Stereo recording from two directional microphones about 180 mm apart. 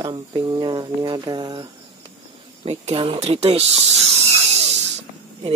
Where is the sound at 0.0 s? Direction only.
25° right (ahead or behind).